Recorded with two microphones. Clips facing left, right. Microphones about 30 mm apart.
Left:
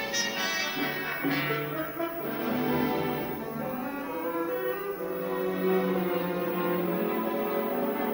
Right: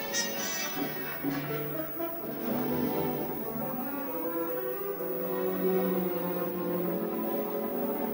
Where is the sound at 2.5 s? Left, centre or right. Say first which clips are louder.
Left 3 dB; left.